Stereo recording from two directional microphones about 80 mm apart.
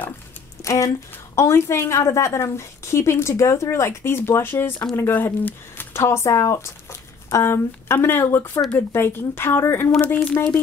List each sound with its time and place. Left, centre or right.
0.7 s a woman's voice: left
5.9 s speech: left
9.9 s speech: centre